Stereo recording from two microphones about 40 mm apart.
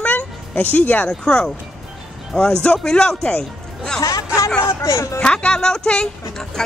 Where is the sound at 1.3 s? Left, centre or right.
Centre.